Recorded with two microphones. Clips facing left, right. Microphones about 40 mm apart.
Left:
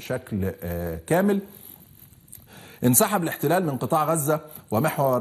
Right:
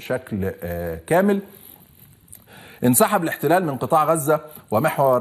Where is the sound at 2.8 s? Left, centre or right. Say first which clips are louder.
Right 4 dB; centre.